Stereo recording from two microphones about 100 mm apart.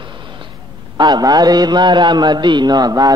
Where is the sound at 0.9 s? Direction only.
45° right (ahead or behind).